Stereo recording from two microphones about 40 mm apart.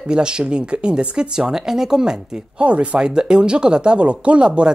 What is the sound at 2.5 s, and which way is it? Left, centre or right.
Speech, right.